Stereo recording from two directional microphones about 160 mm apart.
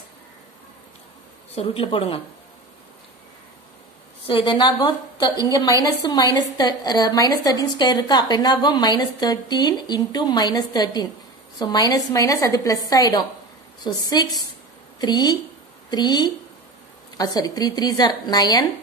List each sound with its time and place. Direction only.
1.5 s a woman's voice: 35° left (ahead or behind)
4.3 s a woman's voice: 30° left (ahead or behind)